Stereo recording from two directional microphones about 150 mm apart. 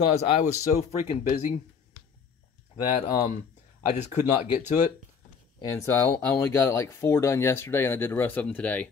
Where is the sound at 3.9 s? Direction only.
50° left (ahead or behind).